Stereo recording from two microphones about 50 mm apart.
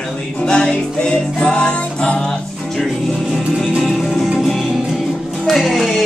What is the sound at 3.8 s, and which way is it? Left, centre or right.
Music, centre.